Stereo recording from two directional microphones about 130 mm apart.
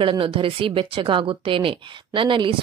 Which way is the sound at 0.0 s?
40° right (ahead or behind).